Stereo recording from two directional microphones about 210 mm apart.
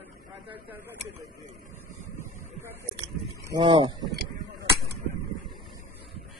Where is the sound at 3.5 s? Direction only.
20° right (ahead or behind).